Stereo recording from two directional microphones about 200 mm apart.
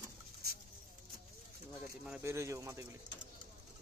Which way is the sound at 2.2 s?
15° right (ahead or behind).